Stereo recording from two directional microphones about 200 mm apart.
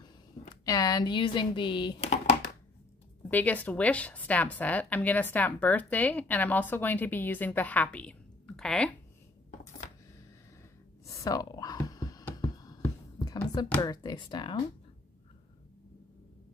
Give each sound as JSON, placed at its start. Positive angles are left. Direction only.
{"t": 0.7, "sound": "speech", "side_deg": 20}
{"t": 3.3, "sound": "a woman's voice", "side_deg": 10}
{"t": 11.1, "sound": "a sound", "side_deg": 15}
{"t": 13.2, "sound": "speech", "side_deg": 20}